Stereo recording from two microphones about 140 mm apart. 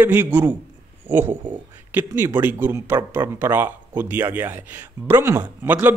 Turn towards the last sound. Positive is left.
turn(degrees=-15)  # may be behind; listen again after turning